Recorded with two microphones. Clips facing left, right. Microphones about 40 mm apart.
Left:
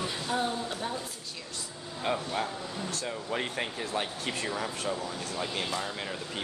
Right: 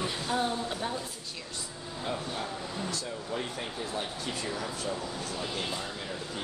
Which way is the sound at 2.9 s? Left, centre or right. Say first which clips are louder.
Left 1 dB; left.